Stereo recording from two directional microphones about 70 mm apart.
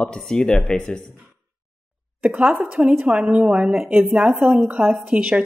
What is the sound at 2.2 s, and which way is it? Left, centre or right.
Mantra, right.